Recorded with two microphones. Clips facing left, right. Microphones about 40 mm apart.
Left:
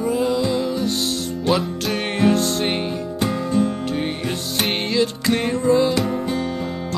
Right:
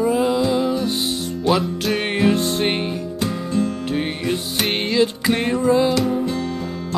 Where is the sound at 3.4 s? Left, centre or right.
Left.